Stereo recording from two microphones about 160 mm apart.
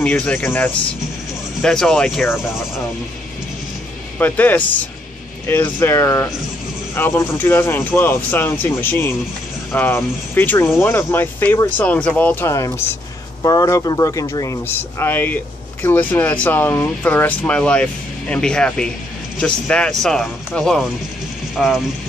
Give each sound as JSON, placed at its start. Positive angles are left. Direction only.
{"t": 0.0, "sound": "speech", "side_deg": 10}
{"t": 4.2, "sound": "speech", "side_deg": 10}